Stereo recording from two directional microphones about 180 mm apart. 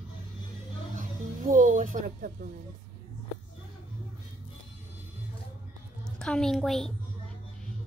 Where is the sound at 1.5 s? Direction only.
45° right (ahead or behind).